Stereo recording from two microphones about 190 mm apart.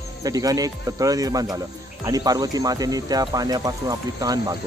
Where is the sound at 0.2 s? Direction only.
20° right (ahead or behind).